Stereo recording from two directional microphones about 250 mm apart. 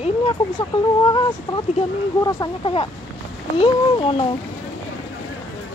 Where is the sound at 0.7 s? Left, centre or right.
Left.